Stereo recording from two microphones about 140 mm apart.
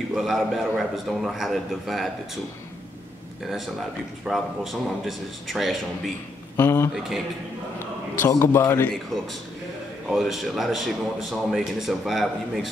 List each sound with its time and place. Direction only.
0.1 s a man's voice: centre (ahead or behind)
3.4 s a man's voice: centre (ahead or behind)
6.5 s a man's voice: 15° left (ahead or behind)
8.2 s a man's voice: 20° left (ahead or behind)
10.0 s a man's voice: centre (ahead or behind)